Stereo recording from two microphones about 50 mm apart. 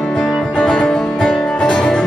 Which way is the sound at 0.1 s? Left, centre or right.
Centre.